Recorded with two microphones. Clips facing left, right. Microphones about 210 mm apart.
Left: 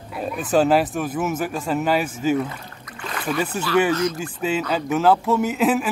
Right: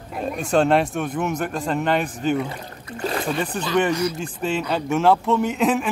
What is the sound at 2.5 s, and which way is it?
Rowboat, 35° right (ahead or behind).